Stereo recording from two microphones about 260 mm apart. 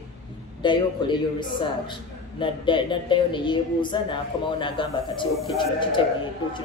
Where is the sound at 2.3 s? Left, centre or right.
Centre.